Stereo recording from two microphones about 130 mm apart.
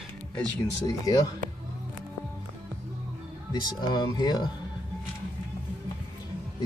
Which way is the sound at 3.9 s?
35° left (ahead or behind).